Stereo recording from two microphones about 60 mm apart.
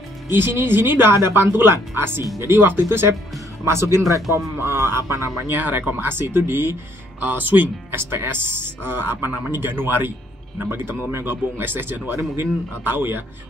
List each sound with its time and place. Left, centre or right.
0.3 s speech: right
4.1 s a man's voice: right
4.6 s speech: right
5.5 s speech: right